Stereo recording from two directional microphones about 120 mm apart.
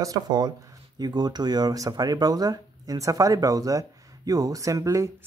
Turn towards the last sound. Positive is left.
turn(degrees=-25)  # may be behind; listen again after turning